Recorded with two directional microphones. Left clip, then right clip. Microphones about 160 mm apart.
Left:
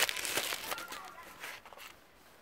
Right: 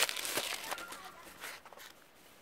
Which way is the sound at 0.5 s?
35° left (ahead or behind).